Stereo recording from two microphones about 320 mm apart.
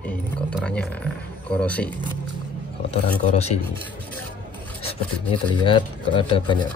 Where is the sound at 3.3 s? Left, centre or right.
Centre.